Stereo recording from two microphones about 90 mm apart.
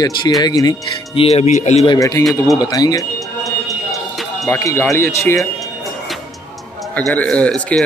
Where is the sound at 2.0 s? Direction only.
35° left (ahead or behind).